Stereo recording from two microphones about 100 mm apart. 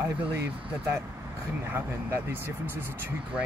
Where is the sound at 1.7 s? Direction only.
20° right (ahead or behind).